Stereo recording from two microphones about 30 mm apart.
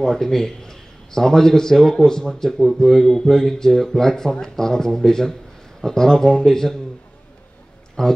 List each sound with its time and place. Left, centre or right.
0.0 s a man's voice: centre
8.0 s speech: centre